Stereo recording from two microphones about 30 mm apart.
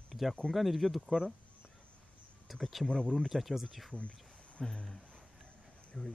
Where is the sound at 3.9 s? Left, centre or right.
Left.